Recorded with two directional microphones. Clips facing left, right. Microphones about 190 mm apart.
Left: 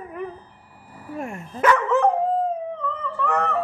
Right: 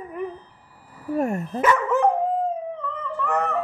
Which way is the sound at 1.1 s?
40° right (ahead or behind).